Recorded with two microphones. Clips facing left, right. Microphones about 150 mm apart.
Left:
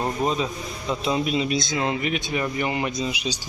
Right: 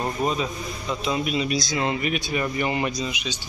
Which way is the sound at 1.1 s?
25° left (ahead or behind).